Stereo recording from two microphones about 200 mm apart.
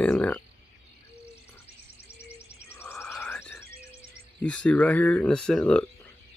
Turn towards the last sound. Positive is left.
turn(degrees=5)  # may be behind; listen again after turning